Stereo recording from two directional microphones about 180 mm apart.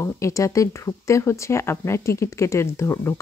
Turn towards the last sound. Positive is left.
turn(degrees=15)  # may be behind; listen again after turning